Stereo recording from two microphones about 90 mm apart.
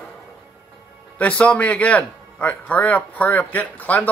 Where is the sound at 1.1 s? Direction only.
15° left (ahead or behind).